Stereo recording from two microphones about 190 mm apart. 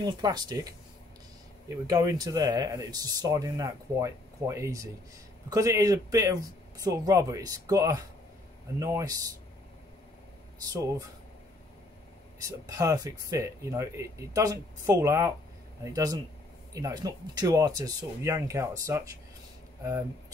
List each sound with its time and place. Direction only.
0.0 s speech: 20° right (ahead or behind)
1.9 s speech: 20° right (ahead or behind)
10.7 s speech: 15° right (ahead or behind)
12.4 s speech: 15° right (ahead or behind)